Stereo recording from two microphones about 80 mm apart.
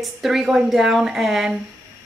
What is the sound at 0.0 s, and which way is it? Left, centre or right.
Speech, centre.